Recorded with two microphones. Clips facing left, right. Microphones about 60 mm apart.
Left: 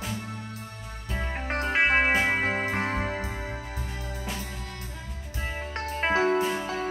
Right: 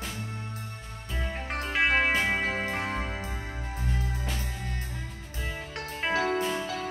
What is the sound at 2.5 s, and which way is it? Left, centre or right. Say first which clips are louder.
Music: left 3 dB; left.